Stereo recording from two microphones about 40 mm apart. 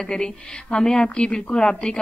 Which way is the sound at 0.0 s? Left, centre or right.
Centre.